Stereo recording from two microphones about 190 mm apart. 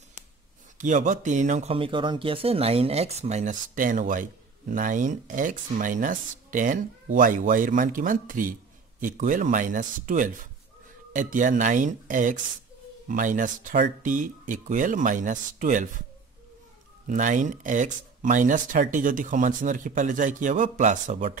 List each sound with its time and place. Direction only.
0.7 s a man's voice: 40° right (ahead or behind)
17.1 s a man's voice: 40° right (ahead or behind)